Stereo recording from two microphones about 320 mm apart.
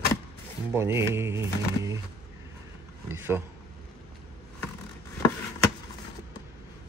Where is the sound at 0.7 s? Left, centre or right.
Centre.